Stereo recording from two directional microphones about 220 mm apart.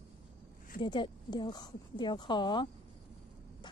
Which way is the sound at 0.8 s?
20° left (ahead or behind).